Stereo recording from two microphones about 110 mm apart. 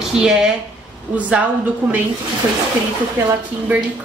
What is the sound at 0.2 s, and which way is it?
A woman's voice, 5° right (ahead or behind).